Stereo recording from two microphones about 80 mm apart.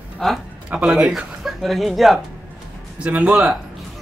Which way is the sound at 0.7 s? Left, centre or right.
Centre.